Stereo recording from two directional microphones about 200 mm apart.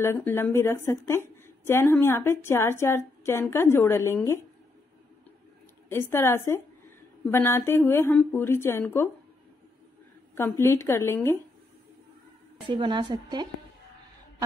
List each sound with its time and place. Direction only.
0.0 s a woman's voice: 10° left (ahead or behind)
5.9 s a woman's voice: 10° left (ahead or behind)
10.3 s a woman's voice: 10° left (ahead or behind)
12.6 s a woman's voice: 20° right (ahead or behind)